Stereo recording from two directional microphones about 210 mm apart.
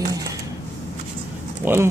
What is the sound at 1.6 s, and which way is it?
Speech, 10° right (ahead or behind).